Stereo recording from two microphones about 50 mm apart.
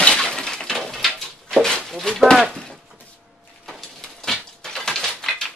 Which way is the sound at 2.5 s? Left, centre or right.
Centre.